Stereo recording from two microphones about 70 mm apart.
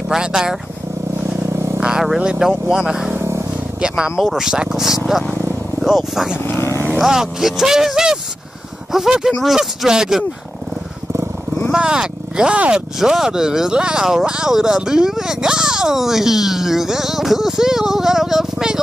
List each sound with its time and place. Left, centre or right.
0.1 s speech: centre
1.8 s speech: centre
3.2 s a sound: right
3.8 s speech: centre
6.4 s vehicle: left
6.9 s speech: centre
11.7 s speech: centre